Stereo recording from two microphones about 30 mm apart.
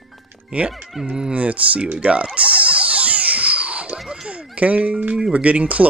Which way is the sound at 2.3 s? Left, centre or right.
Right.